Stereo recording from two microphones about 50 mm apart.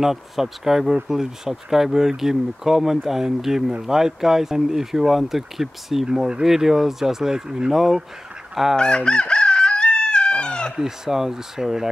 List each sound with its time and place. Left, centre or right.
0.0 s speech: centre
8.7 s chicken: centre
10.8 s speech: centre